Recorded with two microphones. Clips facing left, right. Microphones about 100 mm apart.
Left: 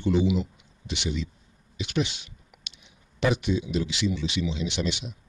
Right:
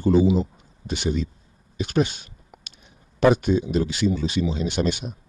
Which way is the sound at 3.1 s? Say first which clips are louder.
Right 7 dB; 45° right (ahead or behind).